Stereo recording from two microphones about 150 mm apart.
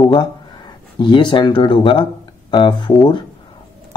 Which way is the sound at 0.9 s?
30° left (ahead or behind).